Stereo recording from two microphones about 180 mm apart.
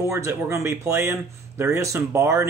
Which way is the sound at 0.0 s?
15° right (ahead or behind).